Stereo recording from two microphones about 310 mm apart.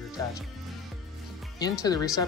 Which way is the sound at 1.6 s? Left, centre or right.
Centre.